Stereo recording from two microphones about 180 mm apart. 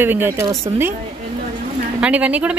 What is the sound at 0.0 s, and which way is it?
Speech, 10° right (ahead or behind).